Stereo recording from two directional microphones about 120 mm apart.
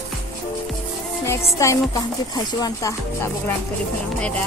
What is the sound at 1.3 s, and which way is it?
Music, 25° left (ahead or behind).